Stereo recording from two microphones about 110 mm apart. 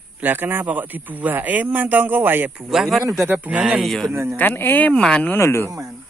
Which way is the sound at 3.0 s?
25° right (ahead or behind).